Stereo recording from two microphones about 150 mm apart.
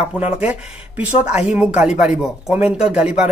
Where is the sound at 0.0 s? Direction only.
10° right (ahead or behind).